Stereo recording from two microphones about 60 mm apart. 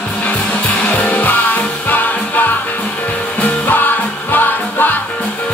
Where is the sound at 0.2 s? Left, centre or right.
Left.